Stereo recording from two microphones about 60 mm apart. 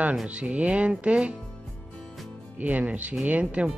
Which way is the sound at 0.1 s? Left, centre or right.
Centre.